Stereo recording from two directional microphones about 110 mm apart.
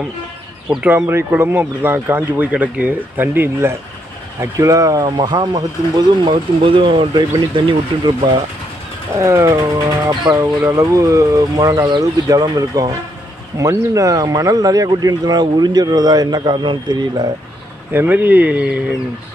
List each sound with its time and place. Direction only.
0.7 s speech: 5° right (ahead or behind)
0.9 s speech: 20° right (ahead or behind)
4.4 s speech: 30° right (ahead or behind)
6.6 s speech: 50° right (ahead or behind)
9.2 s speech: 25° right (ahead or behind); by 17.3 s 40° right (ahead or behind)
17.9 s speech: 15° right (ahead or behind)